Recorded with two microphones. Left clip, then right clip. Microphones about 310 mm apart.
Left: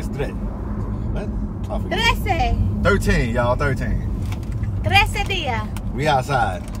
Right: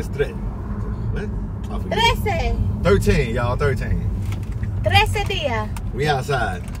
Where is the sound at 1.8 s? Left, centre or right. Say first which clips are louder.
Right 1 dB; centre.